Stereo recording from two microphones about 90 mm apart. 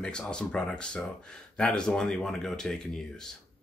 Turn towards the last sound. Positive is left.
turn(degrees=5)  # may be behind; listen again after turning